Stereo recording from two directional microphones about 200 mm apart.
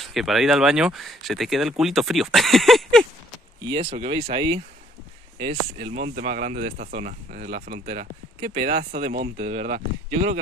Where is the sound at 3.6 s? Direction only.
25° right (ahead or behind).